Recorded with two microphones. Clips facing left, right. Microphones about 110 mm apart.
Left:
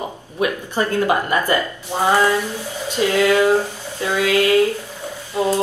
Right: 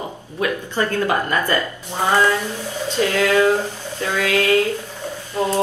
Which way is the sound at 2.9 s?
20° left (ahead or behind).